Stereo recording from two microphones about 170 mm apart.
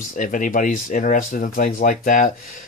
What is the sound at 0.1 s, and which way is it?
Speech, 50° left (ahead or behind).